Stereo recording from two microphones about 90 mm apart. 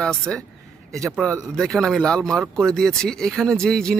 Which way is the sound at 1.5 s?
5° left (ahead or behind).